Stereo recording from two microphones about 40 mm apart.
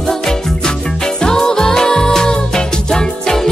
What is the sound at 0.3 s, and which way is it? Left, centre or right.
Music, centre.